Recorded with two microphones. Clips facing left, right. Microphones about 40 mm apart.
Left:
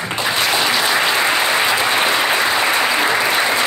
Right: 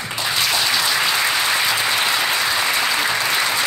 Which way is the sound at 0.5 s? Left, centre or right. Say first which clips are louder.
Left 3 dB; left.